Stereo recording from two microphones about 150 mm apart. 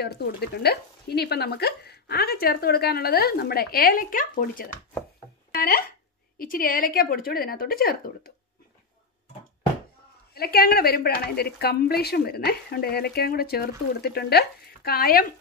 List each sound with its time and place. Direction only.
0.0 s a woman's voice: 90° left; by 4.6 s 65° left (ahead or behind)
5.5 s speech: 80° left
10.3 s a woman's voice: 90° left